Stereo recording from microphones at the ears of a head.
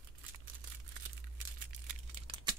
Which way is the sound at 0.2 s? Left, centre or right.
Right.